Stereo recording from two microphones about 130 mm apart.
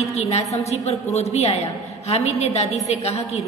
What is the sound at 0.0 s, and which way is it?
A woman's voice, 55° left (ahead or behind).